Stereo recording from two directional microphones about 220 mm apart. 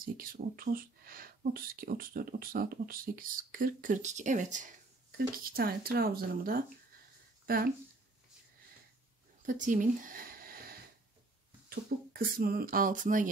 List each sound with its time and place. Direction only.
0.0 s speech: 40° right (ahead or behind)
9.5 s speech: 35° right (ahead or behind)